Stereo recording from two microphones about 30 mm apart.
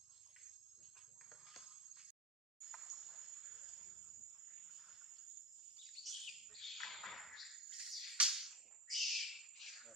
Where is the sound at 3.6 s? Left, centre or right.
Centre.